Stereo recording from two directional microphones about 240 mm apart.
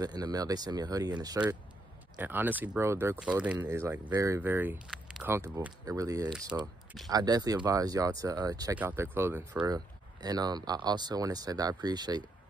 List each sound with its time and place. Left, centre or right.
0.0 s speech: centre